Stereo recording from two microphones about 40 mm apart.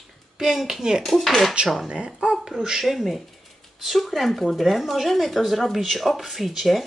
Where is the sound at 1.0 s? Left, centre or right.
Centre.